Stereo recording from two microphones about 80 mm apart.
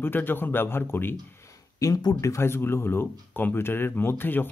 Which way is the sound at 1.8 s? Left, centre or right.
Left.